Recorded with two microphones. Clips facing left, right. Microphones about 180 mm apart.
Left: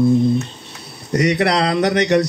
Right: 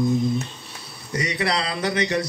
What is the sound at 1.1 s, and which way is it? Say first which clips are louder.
Speech: left 8 dB; 65° left (ahead or behind).